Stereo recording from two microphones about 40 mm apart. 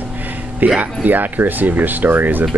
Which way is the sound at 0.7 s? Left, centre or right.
Right.